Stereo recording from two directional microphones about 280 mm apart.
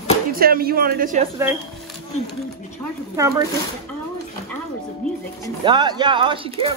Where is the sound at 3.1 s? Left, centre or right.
Centre.